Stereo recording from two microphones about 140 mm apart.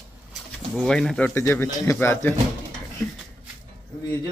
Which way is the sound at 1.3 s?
20° left (ahead or behind).